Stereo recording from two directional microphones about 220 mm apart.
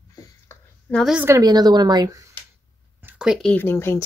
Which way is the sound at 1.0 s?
5° right (ahead or behind).